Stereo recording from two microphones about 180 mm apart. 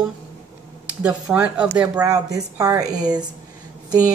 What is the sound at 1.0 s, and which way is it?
A woman's voice, 10° right (ahead or behind).